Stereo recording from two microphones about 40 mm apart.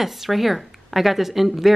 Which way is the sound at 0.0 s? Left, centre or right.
Centre.